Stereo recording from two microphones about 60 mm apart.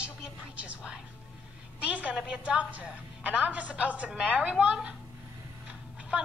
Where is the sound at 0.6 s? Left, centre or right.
Centre.